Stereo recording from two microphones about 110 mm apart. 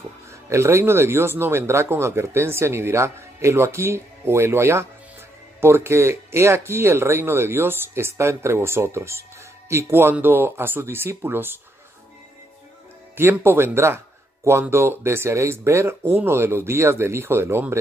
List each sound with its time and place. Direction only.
0.5 s speech: 25° right (ahead or behind)
13.1 s speech: 20° right (ahead or behind)